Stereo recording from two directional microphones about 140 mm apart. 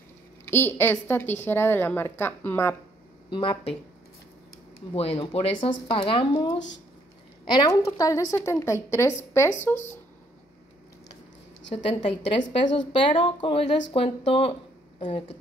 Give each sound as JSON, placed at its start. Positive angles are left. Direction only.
{"t": 0.5, "sound": "a woman's voice", "side_deg": 15}
{"t": 3.3, "sound": "speech", "side_deg": 35}
{"t": 4.9, "sound": "a woman's voice", "side_deg": 45}
{"t": 11.7, "sound": "speech", "side_deg": 40}